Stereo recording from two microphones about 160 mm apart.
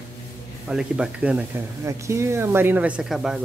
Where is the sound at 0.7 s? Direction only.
5° right (ahead or behind).